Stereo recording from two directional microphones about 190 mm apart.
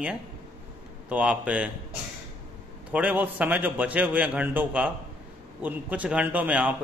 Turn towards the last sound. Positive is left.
turn(degrees=-10)  # may be behind; listen again after turning